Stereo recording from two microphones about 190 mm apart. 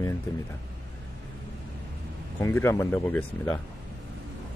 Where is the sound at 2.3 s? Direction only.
10° left (ahead or behind).